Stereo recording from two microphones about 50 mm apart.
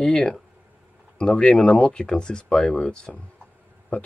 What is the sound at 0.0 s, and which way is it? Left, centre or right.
Speech, centre.